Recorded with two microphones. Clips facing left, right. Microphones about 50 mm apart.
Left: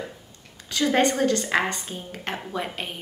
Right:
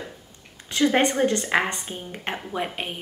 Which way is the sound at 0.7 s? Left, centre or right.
Right.